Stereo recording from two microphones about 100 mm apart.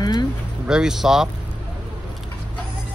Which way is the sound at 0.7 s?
5° right (ahead or behind).